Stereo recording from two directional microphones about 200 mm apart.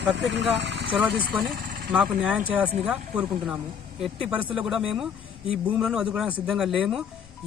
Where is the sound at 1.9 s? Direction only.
5° right (ahead or behind).